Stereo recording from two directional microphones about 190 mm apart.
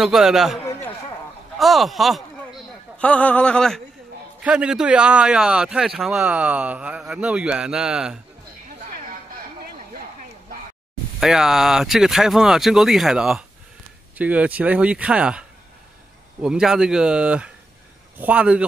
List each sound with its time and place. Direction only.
0.0 s a man's voice: centre (ahead or behind)
1.6 s a man's voice: centre (ahead or behind)
11.1 s a man's voice: 5° right (ahead or behind)
16.4 s a man's voice: 5° right (ahead or behind)